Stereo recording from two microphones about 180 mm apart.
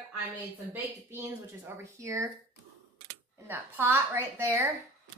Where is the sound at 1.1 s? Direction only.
10° right (ahead or behind).